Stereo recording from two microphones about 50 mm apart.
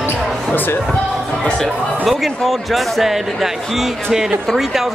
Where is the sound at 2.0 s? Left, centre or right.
Centre.